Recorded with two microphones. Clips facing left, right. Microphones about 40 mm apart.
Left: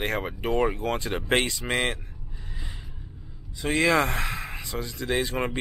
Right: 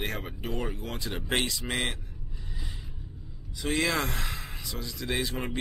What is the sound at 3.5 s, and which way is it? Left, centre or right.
A man's voice, centre.